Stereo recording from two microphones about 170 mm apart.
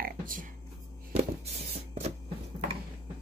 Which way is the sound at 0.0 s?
55° right (ahead or behind).